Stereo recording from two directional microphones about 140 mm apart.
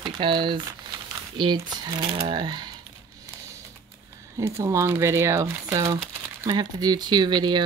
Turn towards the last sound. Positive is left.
turn(degrees=-30)  # may be behind; listen again after turning